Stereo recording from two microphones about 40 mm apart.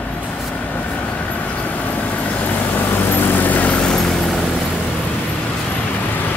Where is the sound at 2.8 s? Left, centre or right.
Left.